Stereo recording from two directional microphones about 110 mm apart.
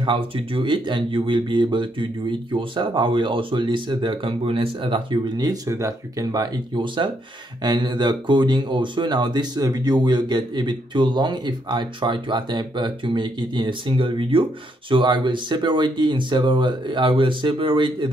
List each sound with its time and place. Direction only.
0.0 s speech: 50° right (ahead or behind)